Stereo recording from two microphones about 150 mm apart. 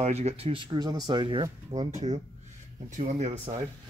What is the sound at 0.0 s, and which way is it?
Speech, 45° right (ahead or behind).